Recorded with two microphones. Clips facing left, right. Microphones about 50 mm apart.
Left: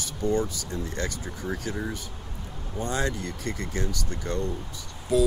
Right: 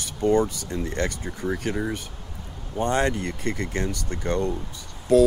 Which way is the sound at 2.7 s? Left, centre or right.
Right.